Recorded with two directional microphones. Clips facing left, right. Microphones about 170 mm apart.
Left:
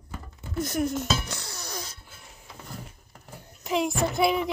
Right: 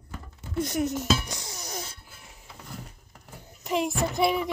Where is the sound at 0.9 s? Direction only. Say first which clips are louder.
Right 1 dB; 15° right (ahead or behind).